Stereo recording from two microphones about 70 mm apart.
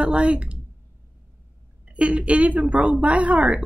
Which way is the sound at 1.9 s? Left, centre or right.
Centre.